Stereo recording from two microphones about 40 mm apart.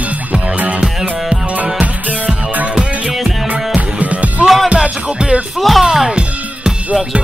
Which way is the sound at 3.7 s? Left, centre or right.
Right.